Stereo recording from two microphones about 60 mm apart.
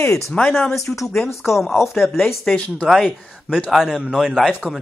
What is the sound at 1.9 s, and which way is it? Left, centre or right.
Speech, centre.